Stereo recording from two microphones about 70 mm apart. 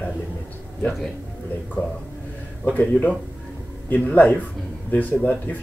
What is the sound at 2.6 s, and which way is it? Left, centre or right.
Speech, left.